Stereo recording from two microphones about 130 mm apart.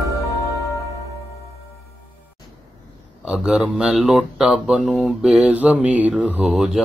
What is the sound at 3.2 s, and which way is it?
Speech, 5° right (ahead or behind).